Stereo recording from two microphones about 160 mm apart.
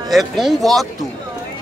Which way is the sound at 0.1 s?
Centre (ahead or behind).